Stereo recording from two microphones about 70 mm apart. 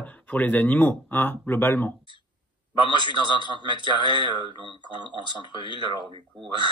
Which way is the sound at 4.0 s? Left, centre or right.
Right.